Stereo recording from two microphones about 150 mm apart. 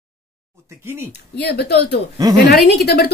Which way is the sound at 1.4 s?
90° left.